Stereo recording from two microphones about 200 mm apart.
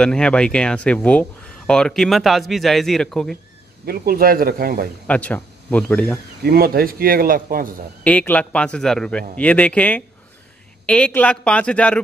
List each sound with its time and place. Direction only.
0.0 s speech: 5° left (ahead or behind)
3.8 s speech: 50° right (ahead or behind)
5.0 s speech: 5° left (ahead or behind)
6.4 s speech: 50° right (ahead or behind)
8.0 s speech: 5° left (ahead or behind)